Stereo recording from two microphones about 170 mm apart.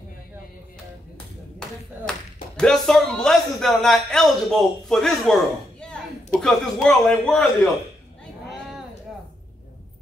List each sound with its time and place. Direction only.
2.0 s clapping: 50° left (ahead or behind)
2.5 s speech: 5° left (ahead or behind)